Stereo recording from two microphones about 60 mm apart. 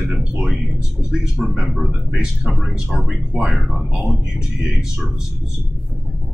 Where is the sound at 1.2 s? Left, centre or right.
Centre.